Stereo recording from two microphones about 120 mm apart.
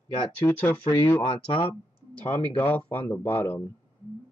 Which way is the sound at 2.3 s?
15° left (ahead or behind).